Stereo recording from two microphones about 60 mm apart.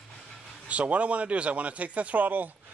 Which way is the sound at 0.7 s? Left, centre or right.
Right.